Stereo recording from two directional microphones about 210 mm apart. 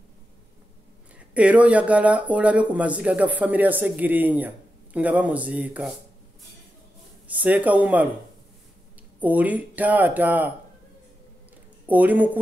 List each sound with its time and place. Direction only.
1.3 s speech: 5° right (ahead or behind)
7.2 s speech: 5° right (ahead or behind)
9.2 s speech: 5° right (ahead or behind)
11.9 s speech: 10° right (ahead or behind)